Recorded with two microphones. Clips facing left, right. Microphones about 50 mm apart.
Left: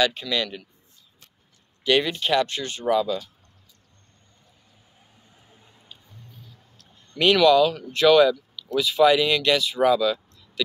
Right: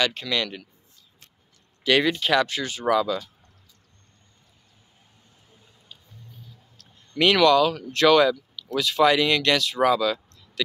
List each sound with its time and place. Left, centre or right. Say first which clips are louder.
0.0 s speech: left 2 dB; right
1.9 s speech: right 1 dB; right
2.9 s speech: even; right
6.8 s a sound: right 1 dB; right
7.9 s speech: left 1 dB; right